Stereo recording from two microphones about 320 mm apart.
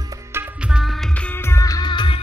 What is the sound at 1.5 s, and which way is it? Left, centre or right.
Music, centre.